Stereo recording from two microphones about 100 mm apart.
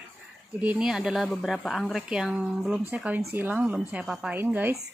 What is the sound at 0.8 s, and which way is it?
Speech, 5° right (ahead or behind).